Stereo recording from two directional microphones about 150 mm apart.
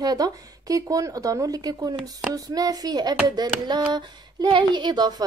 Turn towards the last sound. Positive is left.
turn(degrees=-30)  # may be behind; listen again after turning